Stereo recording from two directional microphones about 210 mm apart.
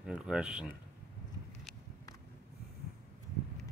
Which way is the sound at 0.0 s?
5° right (ahead or behind).